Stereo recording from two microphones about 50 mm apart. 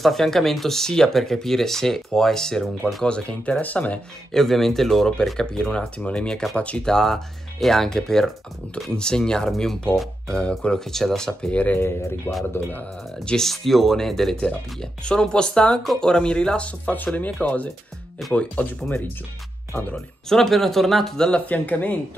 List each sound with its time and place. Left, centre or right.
0.0 s speech: centre
3.0 s speech: left
4.3 s speech: centre; by 6.8 s left
6.8 s speech: centre
10.9 s speech: centre
11.5 s speech: left
13.4 s speech: centre
14.4 s speech: centre
20.2 s speech: centre
21.5 s speech: left